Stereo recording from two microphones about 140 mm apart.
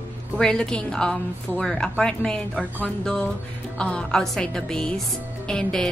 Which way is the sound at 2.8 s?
5° left (ahead or behind).